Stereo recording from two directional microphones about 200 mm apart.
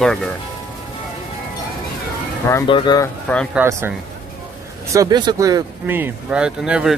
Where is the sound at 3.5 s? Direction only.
10° right (ahead or behind).